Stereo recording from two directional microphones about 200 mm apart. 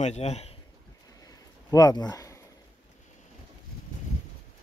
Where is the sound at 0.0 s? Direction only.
35° left (ahead or behind).